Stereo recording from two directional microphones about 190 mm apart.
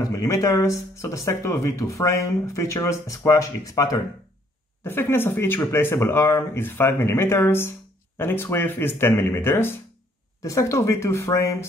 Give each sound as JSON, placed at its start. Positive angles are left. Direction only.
{"t": 0.0, "sound": "speech", "side_deg": 20}